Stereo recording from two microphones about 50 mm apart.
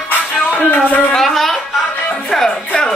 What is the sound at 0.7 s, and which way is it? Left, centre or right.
Speech, left.